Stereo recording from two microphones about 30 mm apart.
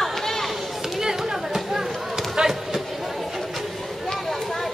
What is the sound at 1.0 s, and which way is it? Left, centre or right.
Music, centre.